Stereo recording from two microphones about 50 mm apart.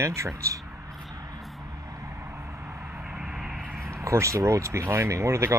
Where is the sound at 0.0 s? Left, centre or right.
Right.